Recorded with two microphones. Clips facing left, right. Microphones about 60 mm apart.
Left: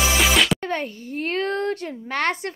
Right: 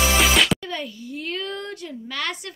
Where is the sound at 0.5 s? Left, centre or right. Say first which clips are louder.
Left 4 dB; left.